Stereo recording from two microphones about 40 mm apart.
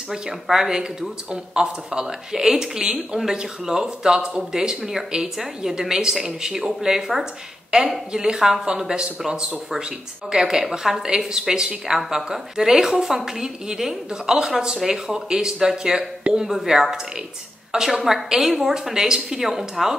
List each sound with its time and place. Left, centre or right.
0.1 s speech: centre
1.3 s speech: right
2.3 s speech: centre